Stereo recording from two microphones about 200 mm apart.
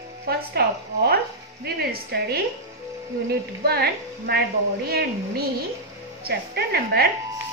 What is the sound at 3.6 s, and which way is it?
Speech, 50° right (ahead or behind).